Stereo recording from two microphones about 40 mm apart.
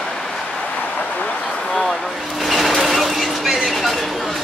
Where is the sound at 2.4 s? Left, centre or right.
Centre.